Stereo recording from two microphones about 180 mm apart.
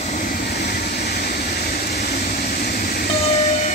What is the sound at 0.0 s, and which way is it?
Vehicle, 45° left (ahead or behind).